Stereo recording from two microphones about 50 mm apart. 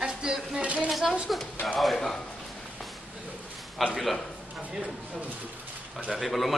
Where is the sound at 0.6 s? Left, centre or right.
Right.